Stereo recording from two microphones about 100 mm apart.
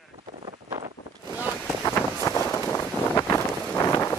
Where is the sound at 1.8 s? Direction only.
30° left (ahead or behind).